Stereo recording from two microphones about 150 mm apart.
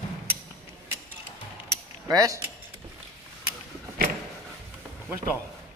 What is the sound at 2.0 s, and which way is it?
Speech, 25° right (ahead or behind).